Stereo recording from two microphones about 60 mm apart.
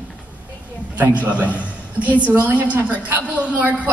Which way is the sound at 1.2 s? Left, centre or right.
Right.